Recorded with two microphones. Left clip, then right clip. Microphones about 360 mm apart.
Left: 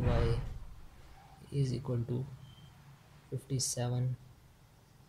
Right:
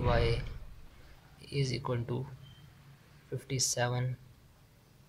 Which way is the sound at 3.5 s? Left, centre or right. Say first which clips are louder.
Right 6 dB; centre.